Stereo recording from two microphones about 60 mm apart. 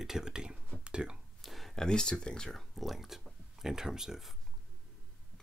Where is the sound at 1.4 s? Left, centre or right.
Centre.